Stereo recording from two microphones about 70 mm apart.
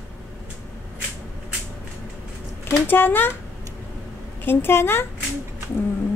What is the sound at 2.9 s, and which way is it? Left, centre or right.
Speech, left.